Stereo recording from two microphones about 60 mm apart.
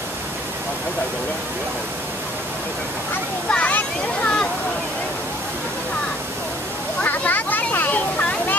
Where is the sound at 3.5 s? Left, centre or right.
Left.